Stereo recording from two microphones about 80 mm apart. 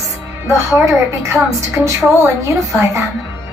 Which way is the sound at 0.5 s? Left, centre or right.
Right.